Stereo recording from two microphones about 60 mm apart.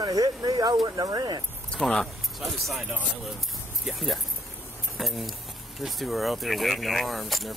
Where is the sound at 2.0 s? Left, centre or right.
Centre.